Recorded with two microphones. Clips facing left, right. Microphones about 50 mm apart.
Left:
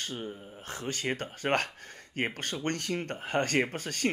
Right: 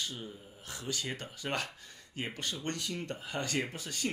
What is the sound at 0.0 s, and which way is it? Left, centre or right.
Speech, left.